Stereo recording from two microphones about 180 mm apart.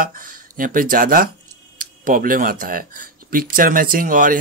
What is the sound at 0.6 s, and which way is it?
Speech, 50° right (ahead or behind).